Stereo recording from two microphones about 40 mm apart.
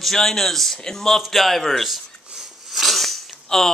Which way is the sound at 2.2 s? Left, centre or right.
Centre.